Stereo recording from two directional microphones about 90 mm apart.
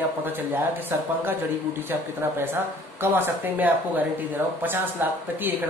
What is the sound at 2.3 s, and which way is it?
A man's voice, 25° right (ahead or behind).